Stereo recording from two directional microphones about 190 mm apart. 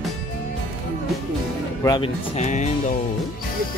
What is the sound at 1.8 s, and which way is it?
Speech, 20° left (ahead or behind).